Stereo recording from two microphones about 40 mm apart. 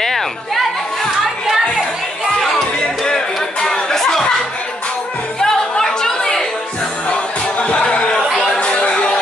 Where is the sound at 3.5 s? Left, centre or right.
Left.